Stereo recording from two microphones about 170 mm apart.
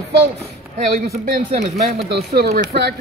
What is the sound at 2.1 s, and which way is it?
Speech, 70° right (ahead or behind).